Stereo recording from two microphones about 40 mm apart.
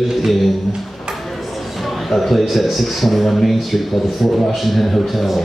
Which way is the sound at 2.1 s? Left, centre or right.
Centre.